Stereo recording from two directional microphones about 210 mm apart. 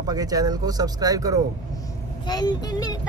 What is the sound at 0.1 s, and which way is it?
Speech, 15° right (ahead or behind).